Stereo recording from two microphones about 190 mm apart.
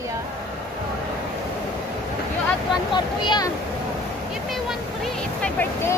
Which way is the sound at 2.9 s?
25° left (ahead or behind).